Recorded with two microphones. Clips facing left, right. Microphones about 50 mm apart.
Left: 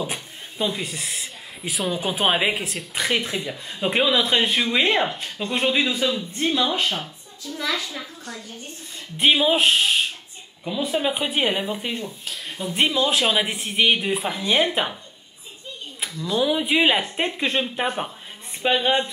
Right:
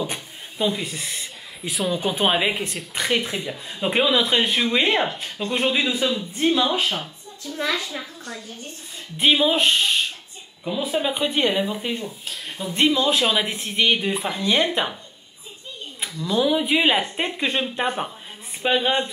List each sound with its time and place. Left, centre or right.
0.0 s speech: centre
7.5 s a woman's voice: right
8.0 s a woman's voice: centre
16.0 s speech: centre